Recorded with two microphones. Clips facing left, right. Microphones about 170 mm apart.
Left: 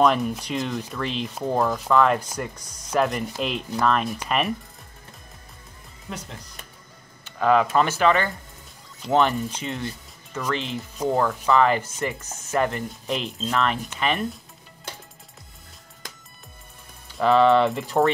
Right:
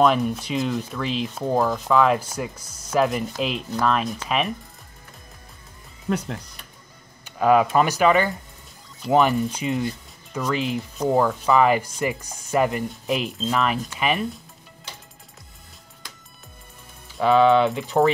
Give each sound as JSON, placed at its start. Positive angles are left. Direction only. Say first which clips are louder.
{"t": 0.0, "sound": "rub", "louder": "right 1 dB", "side_deg": 0}
{"t": 6.0, "sound": "speech", "louder": "right 11 dB", "side_deg": -60}
{"t": 7.3, "sound": "speech", "louder": "right 2 dB", "side_deg": -10}
{"t": 17.1, "sound": "rub", "louder": "right 1 dB", "side_deg": 0}